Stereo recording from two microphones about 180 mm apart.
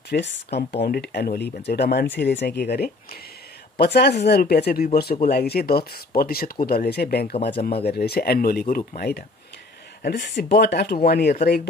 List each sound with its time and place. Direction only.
0.1 s speech: 70° left (ahead or behind)
10.2 s speech: 70° left (ahead or behind)